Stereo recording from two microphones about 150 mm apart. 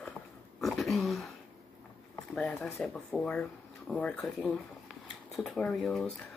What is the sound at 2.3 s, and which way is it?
Speech, 5° left (ahead or behind).